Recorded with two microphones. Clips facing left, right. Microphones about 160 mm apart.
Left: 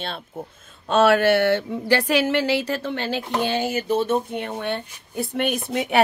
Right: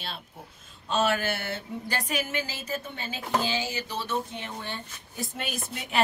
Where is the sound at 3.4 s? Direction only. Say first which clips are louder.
Left 9 dB; 55° left (ahead or behind).